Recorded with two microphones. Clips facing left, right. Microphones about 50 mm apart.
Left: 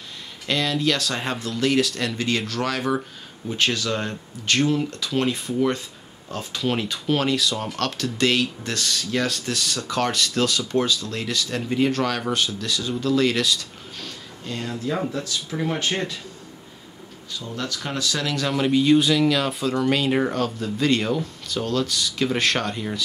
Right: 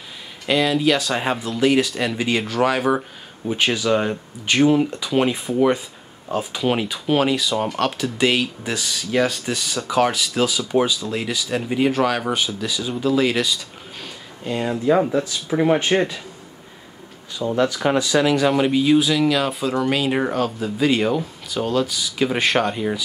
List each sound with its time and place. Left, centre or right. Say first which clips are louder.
0.5 s speech: right 5 dB; centre
17.6 s speech: right 10 dB; right